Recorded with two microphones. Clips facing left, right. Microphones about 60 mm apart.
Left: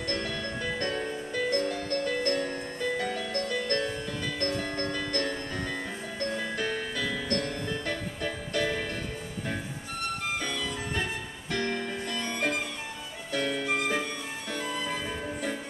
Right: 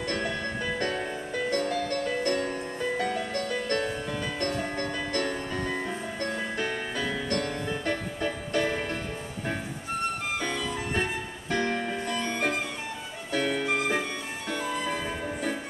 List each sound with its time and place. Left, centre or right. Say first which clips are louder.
0.7 s music: right 1 dB; centre
7.8 s music: right 3 dB; right
10.4 s music: right 2 dB; right
11.5 s music: right 3 dB; centre
14.5 s music: right 3 dB; right